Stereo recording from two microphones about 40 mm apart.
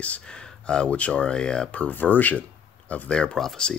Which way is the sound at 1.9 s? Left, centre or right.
Left.